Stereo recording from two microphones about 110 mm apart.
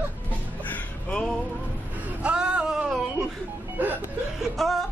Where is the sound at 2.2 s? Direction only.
10° right (ahead or behind).